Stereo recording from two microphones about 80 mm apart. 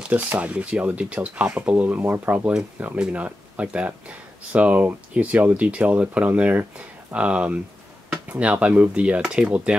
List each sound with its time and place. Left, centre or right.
0.1 s speech: centre